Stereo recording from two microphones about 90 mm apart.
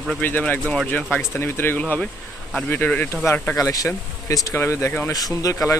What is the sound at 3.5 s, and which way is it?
Speech, 40° left (ahead or behind).